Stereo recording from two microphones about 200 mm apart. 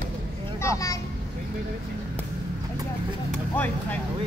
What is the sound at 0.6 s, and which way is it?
Vehicle, 15° left (ahead or behind).